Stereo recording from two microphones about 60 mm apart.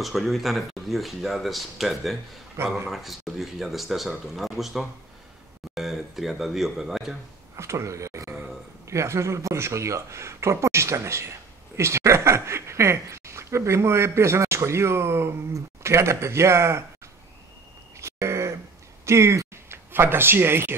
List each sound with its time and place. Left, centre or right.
0.0 s speech: centre
2.6 s speech: right
2.9 s speech: centre
7.5 s a sound: right
8.8 s speech: right
17.9 s a sound: right
19.0 s speech: right